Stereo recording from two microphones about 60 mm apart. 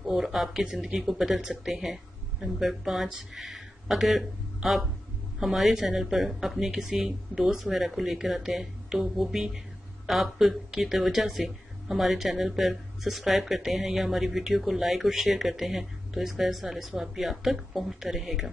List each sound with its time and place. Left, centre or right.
0.0 s speech: centre